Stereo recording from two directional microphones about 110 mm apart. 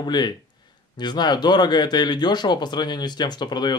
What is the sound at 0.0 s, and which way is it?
Speech, 40° left (ahead or behind).